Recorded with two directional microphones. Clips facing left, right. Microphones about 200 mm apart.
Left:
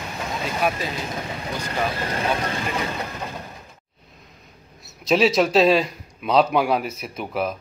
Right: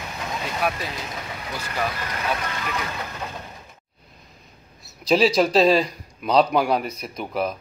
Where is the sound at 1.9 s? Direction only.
30° left (ahead or behind).